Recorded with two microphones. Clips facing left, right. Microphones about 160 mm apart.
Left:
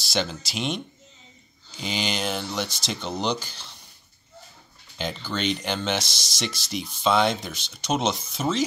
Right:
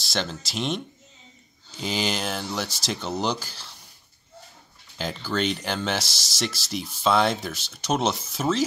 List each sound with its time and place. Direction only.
0.0 s speech: centre (ahead or behind)
4.9 s speech: 5° right (ahead or behind)